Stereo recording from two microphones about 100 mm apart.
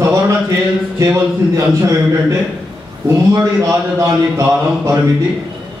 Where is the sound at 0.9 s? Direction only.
30° right (ahead or behind).